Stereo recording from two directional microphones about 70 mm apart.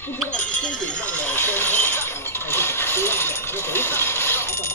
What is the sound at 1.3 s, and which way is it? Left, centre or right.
Coin, left.